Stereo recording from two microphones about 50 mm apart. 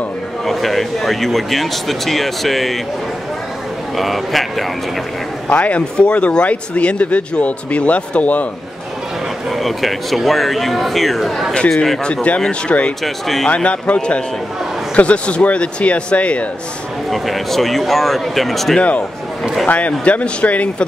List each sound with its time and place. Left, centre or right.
0.5 s speech: centre
3.9 s speech: centre
5.5 s speech: left
9.5 s a man's voice: centre
12.0 s speech: left
13.0 s speech: centre
13.5 s speech: left
17.1 s speech: centre
18.8 s speech: left